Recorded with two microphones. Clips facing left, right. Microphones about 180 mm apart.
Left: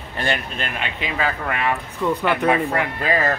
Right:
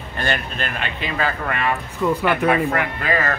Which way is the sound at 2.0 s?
5° right (ahead or behind).